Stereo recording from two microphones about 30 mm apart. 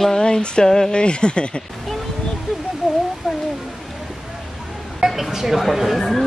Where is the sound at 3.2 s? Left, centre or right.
Centre.